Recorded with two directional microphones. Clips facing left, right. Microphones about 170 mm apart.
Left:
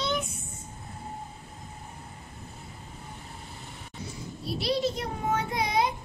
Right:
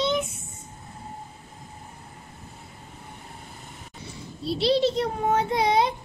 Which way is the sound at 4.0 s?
25° right (ahead or behind).